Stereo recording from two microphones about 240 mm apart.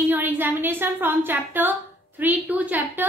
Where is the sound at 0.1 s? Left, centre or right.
Centre.